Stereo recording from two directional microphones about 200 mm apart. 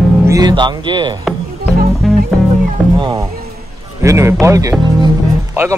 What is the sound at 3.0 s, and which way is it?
Music, 15° right (ahead or behind).